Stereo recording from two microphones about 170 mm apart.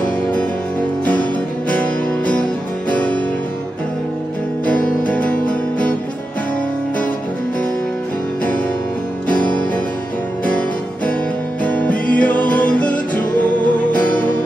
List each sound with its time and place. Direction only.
0.0 s music: 5° left (ahead or behind)
1.7 s music: 5° left (ahead or behind)
4.7 s music: 55° left (ahead or behind)
11.6 s music: 10° left (ahead or behind)